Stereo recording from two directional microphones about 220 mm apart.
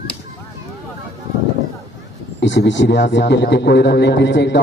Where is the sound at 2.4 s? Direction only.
55° left (ahead or behind).